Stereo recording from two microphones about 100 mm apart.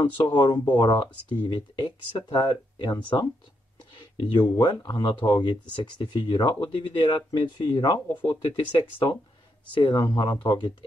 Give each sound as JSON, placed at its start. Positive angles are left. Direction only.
{"t": 0.0, "sound": "speech", "side_deg": 45}
{"t": 4.3, "sound": "speech", "side_deg": 50}
{"t": 7.3, "sound": "speech", "side_deg": 45}